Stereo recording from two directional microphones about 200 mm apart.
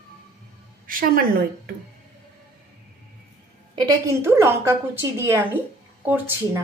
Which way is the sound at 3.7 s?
15° right (ahead or behind).